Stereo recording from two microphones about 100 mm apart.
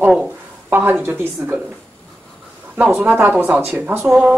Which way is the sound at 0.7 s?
20° right (ahead or behind).